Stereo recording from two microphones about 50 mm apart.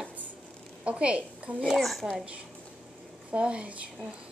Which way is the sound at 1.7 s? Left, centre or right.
Centre.